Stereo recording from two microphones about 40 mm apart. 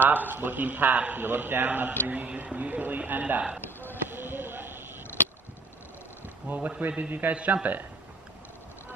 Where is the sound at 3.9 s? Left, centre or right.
Right.